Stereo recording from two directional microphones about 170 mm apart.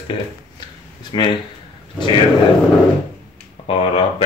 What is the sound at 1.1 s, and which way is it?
Speech, 30° left (ahead or behind).